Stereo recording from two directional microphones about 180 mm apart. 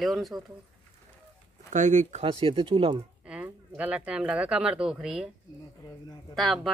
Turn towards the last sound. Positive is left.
turn(degrees=0)  # may be behind; listen again after turning